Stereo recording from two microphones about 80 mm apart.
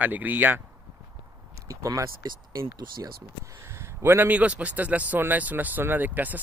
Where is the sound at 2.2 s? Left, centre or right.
Right.